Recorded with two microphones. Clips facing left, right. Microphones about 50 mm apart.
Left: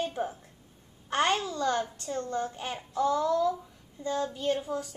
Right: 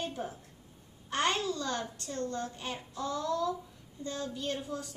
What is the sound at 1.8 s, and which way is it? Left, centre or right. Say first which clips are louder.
Speech: left 6 dB; centre.